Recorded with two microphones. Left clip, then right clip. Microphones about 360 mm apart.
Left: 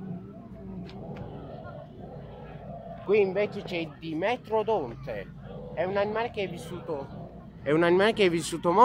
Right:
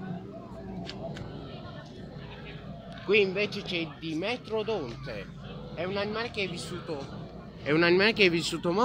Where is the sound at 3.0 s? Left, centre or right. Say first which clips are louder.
Left 1 dB; centre.